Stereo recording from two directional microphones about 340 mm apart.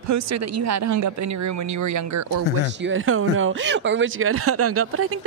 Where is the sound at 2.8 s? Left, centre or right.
Right.